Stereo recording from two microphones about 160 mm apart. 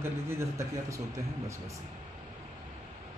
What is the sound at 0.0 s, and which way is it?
Speech, 15° right (ahead or behind).